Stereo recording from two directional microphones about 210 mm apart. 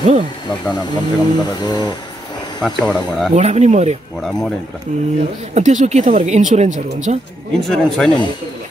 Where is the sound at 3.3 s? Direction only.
30° right (ahead or behind).